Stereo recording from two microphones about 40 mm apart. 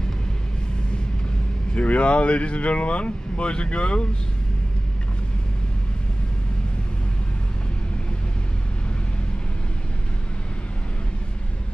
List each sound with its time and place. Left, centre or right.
1.8 s speech: left